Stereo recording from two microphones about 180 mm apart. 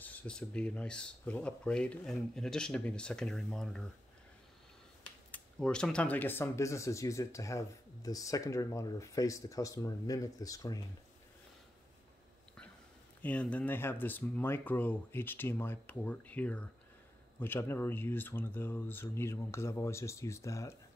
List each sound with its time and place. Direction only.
0.0 s speech: 5° left (ahead or behind)
5.0 s speech: 5° left (ahead or behind)
13.2 s speech: 10° left (ahead or behind)